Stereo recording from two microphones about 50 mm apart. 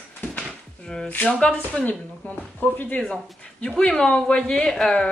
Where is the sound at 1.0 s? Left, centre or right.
Left.